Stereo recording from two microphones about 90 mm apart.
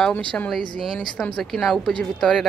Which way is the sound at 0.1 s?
15° left (ahead or behind).